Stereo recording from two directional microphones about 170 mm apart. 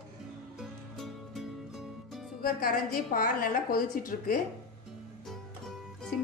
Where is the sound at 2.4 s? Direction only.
60° left (ahead or behind).